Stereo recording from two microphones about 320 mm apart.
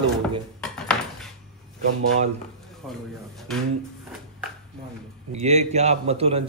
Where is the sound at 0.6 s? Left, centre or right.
Centre.